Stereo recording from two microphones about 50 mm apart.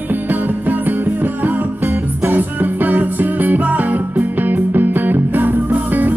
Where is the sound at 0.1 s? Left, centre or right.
Right.